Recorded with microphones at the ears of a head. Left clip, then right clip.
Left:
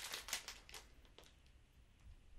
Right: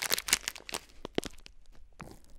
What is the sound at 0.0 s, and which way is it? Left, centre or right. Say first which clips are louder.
Crunch: right 16 dB; right.